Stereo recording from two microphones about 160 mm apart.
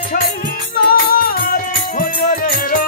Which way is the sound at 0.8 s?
65° left (ahead or behind).